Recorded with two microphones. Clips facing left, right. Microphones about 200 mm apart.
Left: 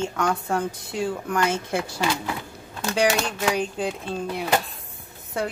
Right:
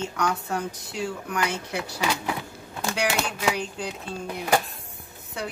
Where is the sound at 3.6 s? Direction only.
55° left (ahead or behind).